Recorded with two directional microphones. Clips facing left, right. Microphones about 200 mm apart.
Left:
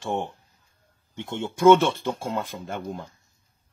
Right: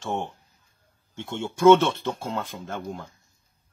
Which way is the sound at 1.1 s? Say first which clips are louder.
Left 1 dB; 15° left (ahead or behind).